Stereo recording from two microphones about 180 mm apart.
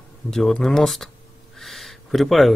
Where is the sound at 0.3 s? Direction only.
Centre (ahead or behind).